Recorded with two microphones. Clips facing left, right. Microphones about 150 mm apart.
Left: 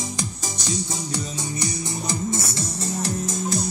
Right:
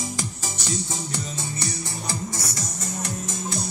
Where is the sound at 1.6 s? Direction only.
20° left (ahead or behind).